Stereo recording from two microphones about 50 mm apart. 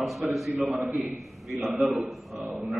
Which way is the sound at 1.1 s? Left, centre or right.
Centre.